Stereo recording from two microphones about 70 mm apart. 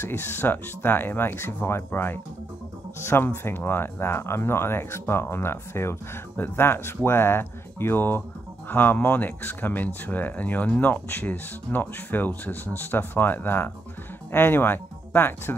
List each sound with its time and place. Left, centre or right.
0.0 s speech: left